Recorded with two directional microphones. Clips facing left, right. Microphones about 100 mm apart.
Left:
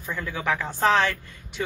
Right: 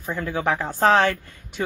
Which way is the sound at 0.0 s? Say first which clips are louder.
Right 4 dB; 35° right (ahead or behind).